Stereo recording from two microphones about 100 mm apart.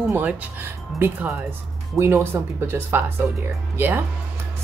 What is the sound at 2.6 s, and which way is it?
Speech, 20° right (ahead or behind).